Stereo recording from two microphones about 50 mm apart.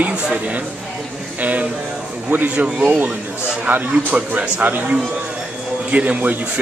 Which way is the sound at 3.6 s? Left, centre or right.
Right.